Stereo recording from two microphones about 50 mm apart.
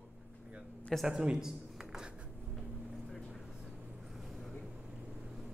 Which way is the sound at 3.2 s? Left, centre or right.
Centre.